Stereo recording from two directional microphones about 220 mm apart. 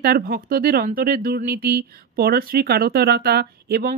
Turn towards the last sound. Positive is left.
turn(degrees=-45)  # may be behind; listen again after turning